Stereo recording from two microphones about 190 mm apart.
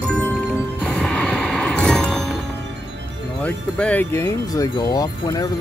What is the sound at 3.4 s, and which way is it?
Speech, 5° left (ahead or behind).